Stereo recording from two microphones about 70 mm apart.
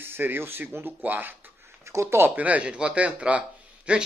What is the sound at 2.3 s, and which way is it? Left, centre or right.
Speech, right.